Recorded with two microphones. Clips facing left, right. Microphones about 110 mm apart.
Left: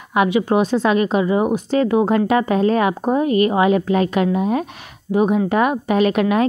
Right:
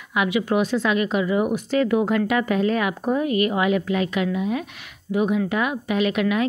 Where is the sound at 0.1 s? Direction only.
35° left (ahead or behind).